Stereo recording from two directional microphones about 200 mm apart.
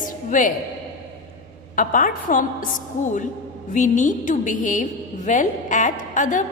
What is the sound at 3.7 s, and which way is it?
A woman's voice, 40° left (ahead or behind).